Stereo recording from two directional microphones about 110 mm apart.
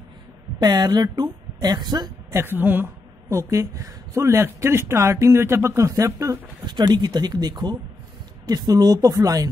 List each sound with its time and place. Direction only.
0.6 s speech: 40° right (ahead or behind)
2.3 s speech: 20° right (ahead or behind)
3.3 s speech: 30° right (ahead or behind)
6.6 s speech: 45° right (ahead or behind)